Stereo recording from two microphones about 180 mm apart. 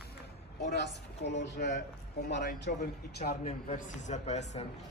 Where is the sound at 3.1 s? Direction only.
60° left (ahead or behind).